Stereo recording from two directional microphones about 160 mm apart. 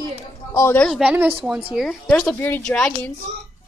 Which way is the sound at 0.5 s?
10° left (ahead or behind).